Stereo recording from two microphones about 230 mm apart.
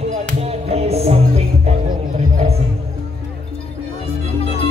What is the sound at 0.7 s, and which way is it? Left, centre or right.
Music, right.